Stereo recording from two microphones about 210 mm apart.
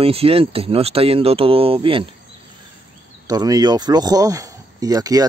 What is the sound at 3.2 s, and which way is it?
Speech, 15° right (ahead or behind).